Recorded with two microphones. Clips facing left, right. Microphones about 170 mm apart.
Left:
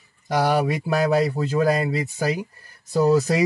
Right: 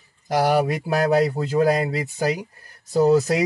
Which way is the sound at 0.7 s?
55° right (ahead or behind).